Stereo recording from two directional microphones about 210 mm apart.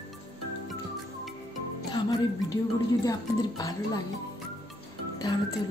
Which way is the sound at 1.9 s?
20° left (ahead or behind).